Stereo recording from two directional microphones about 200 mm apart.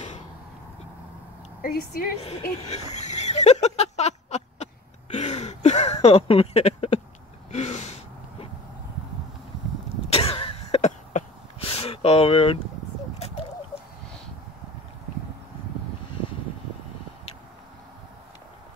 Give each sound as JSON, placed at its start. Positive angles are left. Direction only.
{"t": 1.6, "sound": "a woman's voice", "side_deg": 50}
{"t": 2.6, "sound": "a sound", "side_deg": 35}
{"t": 7.5, "sound": "gasp", "side_deg": 35}
{"t": 10.0, "sound": "cough", "side_deg": 30}
{"t": 13.2, "sound": "bird", "side_deg": 30}